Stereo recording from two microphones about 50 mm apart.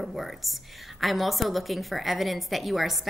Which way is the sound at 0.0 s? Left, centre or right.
Centre.